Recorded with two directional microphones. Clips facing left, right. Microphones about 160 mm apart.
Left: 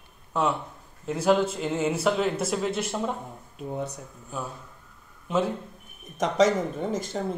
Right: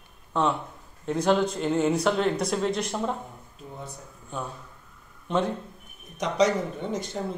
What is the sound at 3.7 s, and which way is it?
Speech, 70° left (ahead or behind).